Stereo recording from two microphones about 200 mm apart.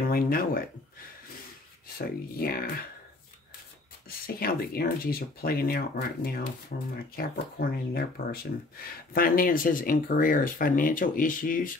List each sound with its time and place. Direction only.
0.1 s speech: 45° left (ahead or behind)
2.0 s speech: 50° left (ahead or behind)
4.3 s speech: 50° left (ahead or behind)